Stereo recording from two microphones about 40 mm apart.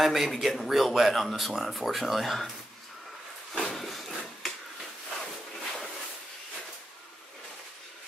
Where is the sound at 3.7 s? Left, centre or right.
Centre.